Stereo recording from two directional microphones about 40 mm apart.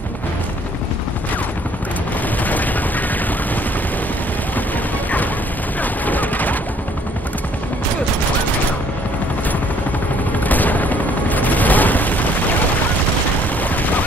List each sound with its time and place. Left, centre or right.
2.4 s a sound: left
5.8 s fusillade: left
10.4 s fusillade: left